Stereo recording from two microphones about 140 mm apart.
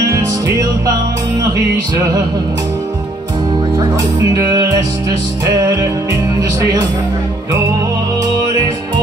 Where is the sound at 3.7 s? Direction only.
25° right (ahead or behind).